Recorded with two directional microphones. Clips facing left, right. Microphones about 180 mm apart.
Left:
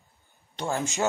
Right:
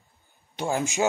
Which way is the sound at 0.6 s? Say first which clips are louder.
Right 3 dB; 15° right (ahead or behind).